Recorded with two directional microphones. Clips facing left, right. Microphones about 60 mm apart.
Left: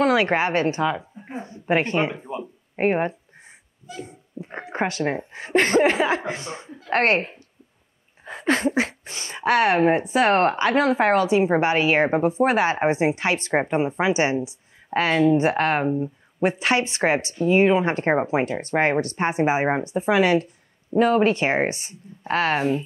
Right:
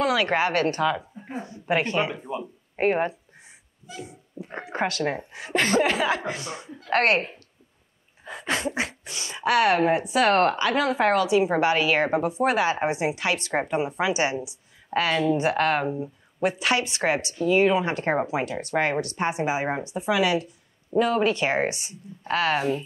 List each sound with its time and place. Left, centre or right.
0.0 s a woman's voice: left
1.2 s a sound: left
1.5 s a woman's voice: left
4.4 s a sound: centre
4.7 s a woman's voice: left
5.3 s a woman's voice: left
7.2 s a woman's voice: centre
8.3 s a woman's voice: left